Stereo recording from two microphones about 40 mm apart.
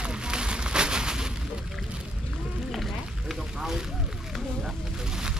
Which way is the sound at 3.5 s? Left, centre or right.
Centre.